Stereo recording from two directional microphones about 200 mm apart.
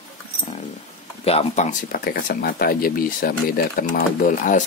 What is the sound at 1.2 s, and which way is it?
Speech, 30° left (ahead or behind).